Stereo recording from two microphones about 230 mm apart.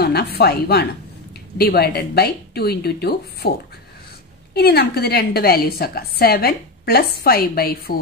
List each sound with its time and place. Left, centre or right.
0.0 s a woman's voice: left
4.6 s a woman's voice: left